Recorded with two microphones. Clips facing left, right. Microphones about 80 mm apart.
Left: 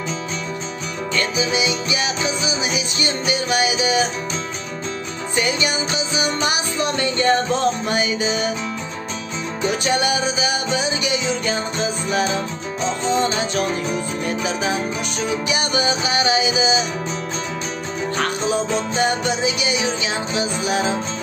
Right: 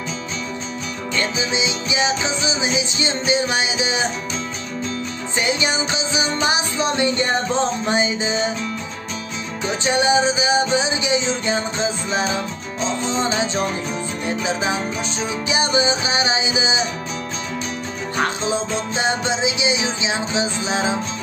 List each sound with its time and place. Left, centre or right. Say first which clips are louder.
1.1 s music: left 1 dB; right
5.3 s music: even; right
9.6 s music: even; right
18.1 s music: even; right